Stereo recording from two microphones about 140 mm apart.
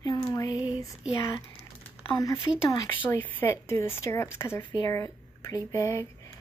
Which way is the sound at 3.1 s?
15° left (ahead or behind).